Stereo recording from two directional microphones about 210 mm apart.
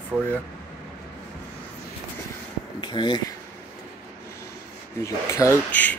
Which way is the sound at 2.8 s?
20° left (ahead or behind).